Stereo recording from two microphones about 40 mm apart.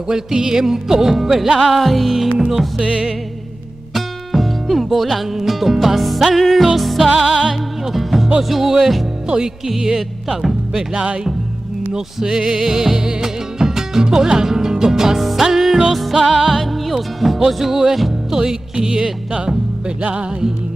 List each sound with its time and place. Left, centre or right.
0.1 s music: centre
2.8 s music: right
3.9 s music: centre
7.2 s music: centre
11.9 s music: centre
18.3 s music: centre
20.2 s music: right